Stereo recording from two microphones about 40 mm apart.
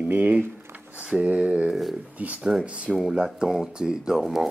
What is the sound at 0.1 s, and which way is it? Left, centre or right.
Speech, right.